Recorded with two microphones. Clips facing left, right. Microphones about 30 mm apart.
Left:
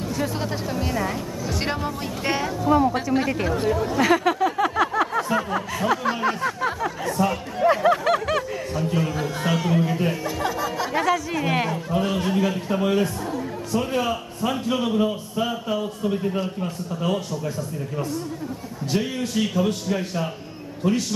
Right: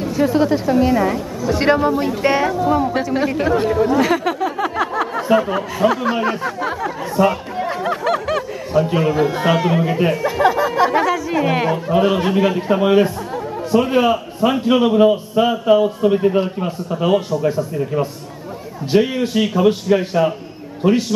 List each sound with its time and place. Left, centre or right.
0.1 s a woman's voice: centre
4.0 s a sound: centre
5.3 s a woman's voice: centre
6.2 s a sound: centre
7.2 s speech: right
7.6 s snicker: centre
8.7 s a man's voice: right
11.7 s a man's voice: right